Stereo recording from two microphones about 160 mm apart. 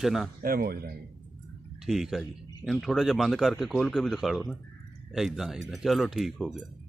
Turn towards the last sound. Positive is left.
turn(degrees=0)  # may be behind; listen again after turning